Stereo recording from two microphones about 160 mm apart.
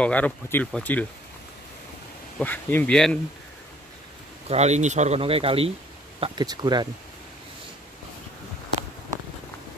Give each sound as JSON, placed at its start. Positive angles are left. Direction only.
{"t": 0.0, "sound": "speech", "side_deg": 10}
{"t": 2.3, "sound": "speech", "side_deg": 10}
{"t": 4.5, "sound": "speech", "side_deg": -45}